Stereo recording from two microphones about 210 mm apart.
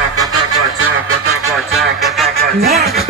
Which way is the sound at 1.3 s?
75° right (ahead or behind).